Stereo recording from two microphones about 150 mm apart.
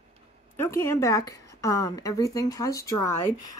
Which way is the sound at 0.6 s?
20° left (ahead or behind).